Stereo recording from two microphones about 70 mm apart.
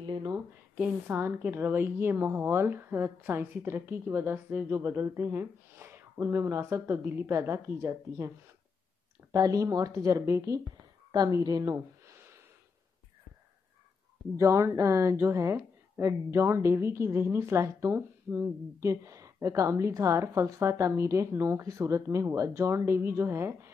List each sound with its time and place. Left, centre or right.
0.7 s a woman's voice: right
1.2 s a woman's voice: right
6.7 s a woman's voice: right
7.2 s a woman's voice: right
9.3 s a woman's voice: right
11.7 s a sound: right
14.4 s a woman's voice: right